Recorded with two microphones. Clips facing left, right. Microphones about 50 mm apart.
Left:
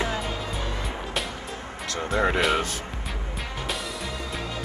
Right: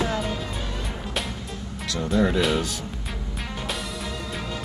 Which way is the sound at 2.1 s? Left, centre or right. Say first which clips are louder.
Right 2 dB; left.